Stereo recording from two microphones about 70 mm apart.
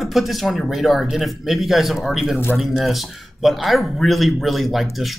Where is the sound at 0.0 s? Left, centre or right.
Centre.